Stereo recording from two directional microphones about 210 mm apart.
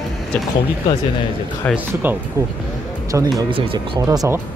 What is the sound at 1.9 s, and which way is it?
Speech, 10° right (ahead or behind).